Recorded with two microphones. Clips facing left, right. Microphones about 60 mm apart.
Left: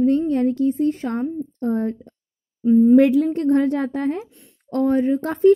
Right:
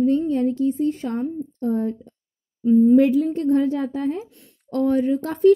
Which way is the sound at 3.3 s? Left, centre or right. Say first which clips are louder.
Left 1 dB; left.